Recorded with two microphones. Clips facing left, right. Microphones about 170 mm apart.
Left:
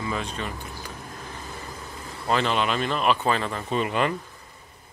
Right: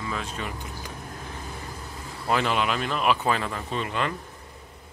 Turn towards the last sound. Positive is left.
turn(degrees=10)  # may be behind; listen again after turning